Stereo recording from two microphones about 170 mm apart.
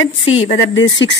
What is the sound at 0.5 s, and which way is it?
Speech, 90° left.